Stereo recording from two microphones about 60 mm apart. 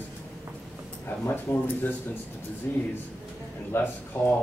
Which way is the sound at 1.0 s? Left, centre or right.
Left.